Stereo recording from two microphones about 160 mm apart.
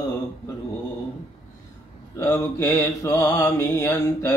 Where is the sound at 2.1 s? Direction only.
15° left (ahead or behind).